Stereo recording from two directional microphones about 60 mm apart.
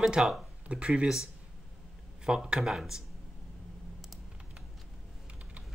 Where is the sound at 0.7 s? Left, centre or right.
Centre.